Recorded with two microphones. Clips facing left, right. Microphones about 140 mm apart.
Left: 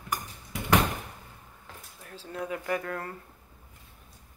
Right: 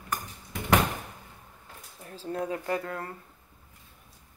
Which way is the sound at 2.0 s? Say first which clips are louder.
Right 3 dB; 35° right (ahead or behind).